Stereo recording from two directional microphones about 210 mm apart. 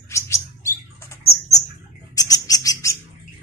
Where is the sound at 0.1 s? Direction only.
15° left (ahead or behind).